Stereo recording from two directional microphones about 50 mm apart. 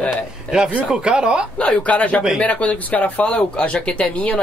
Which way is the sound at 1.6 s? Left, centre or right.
Left.